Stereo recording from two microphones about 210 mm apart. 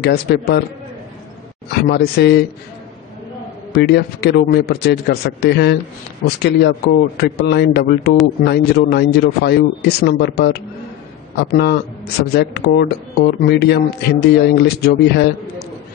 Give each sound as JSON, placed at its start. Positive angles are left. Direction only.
{"t": 0.0, "sound": "speech", "side_deg": 50}
{"t": 1.7, "sound": "speech", "side_deg": 50}
{"t": 3.7, "sound": "speech", "side_deg": 50}